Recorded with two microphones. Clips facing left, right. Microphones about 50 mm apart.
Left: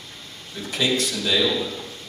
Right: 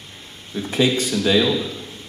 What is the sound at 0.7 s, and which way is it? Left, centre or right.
Speech, right.